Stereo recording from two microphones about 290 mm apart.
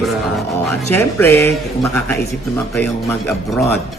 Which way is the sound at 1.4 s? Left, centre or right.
Centre.